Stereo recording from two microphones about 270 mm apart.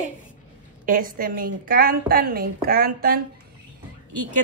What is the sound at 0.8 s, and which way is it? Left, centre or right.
A woman's voice, right.